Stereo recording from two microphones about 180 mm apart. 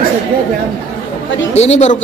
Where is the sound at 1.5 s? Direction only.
40° left (ahead or behind).